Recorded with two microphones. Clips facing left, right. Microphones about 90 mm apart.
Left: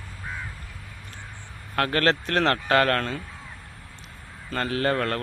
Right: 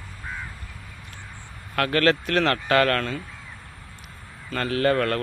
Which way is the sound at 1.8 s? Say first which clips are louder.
Right 2 dB; 30° left (ahead or behind).